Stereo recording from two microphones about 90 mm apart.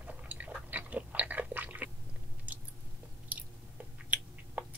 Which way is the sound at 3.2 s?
15° right (ahead or behind).